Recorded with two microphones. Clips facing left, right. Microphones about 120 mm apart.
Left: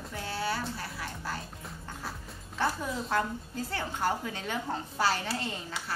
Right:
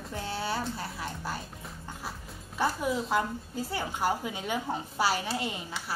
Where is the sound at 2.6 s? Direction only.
10° right (ahead or behind).